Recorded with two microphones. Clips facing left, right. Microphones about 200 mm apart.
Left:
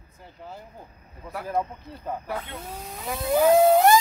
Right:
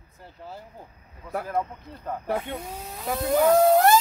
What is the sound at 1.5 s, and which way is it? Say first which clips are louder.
Speech: left 5 dB; 15° left (ahead or behind).